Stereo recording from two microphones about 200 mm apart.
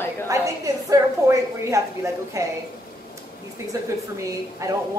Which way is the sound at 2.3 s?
15° right (ahead or behind).